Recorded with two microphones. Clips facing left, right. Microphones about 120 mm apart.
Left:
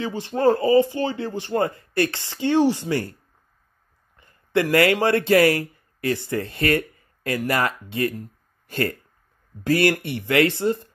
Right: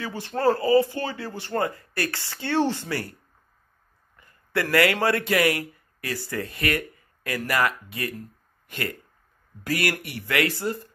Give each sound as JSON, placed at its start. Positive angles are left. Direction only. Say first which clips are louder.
{"t": 0.0, "sound": "speech", "louder": "left 3 dB", "side_deg": 20}
{"t": 4.2, "sound": "speech", "louder": "left 6 dB", "side_deg": 20}